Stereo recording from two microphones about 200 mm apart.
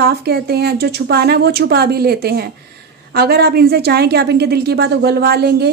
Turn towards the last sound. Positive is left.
turn(degrees=-55)  # may be behind; listen again after turning